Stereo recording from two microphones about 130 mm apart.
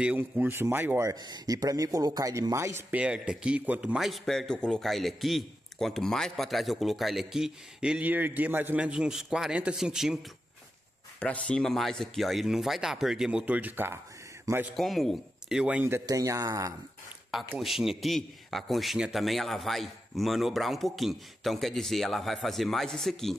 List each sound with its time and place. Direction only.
0.0 s speech: 15° right (ahead or behind)
1.2 s chopping: 30° right (ahead or behind)
2.9 s speech: 10° right (ahead or behind)
11.1 s a man's voice: 10° left (ahead or behind); by 14.7 s 20° right (ahead or behind)
14.8 s speech: centre (ahead or behind)
16.1 s chopping: 25° right (ahead or behind)
17.6 s speech: centre (ahead or behind)